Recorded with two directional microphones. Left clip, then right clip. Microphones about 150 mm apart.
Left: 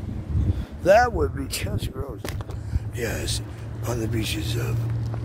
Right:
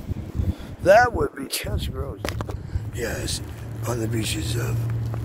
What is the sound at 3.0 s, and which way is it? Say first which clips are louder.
Speech: even; 30° left (ahead or behind).